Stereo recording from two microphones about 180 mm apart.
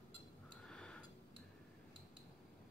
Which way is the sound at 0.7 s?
5° left (ahead or behind).